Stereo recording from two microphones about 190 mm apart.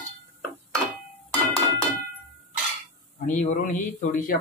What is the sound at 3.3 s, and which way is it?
Speech, 40° left (ahead or behind).